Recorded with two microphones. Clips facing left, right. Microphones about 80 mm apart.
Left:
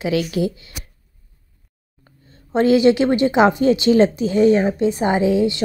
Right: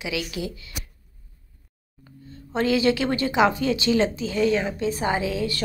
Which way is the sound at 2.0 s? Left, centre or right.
Left.